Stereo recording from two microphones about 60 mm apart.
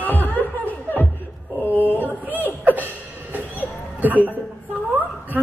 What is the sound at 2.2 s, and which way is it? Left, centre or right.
Chuckle, right.